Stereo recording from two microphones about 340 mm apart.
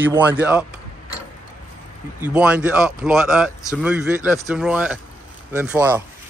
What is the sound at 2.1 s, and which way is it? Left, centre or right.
Speech, centre.